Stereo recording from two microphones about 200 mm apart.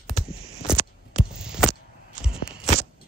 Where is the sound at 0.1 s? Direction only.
30° left (ahead or behind).